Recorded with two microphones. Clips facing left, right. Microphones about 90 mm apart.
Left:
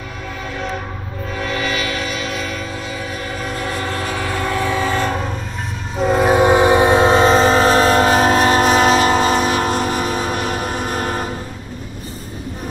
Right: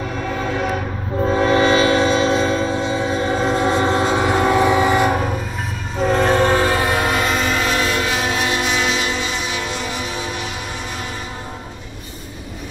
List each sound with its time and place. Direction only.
1.2 s train: 30° right (ahead or behind); by 5.3 s 15° right (ahead or behind)
5.9 s train: 5° left (ahead or behind); by 11.2 s 45° left (ahead or behind)